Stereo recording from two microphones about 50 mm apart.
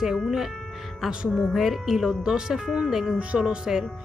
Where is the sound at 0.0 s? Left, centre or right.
Centre.